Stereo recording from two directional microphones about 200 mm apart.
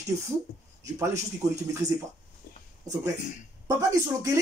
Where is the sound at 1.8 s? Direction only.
35° right (ahead or behind).